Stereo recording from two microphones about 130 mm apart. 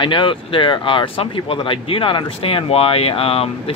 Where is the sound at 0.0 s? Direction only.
40° left (ahead or behind).